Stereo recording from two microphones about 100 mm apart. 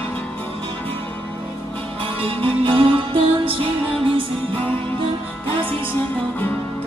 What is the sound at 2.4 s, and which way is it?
Music, 60° right (ahead or behind).